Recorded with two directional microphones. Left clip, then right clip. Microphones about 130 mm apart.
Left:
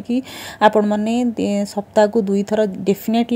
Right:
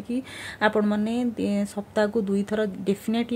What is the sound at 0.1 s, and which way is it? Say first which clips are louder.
Speech: left 8 dB; 40° left (ahead or behind).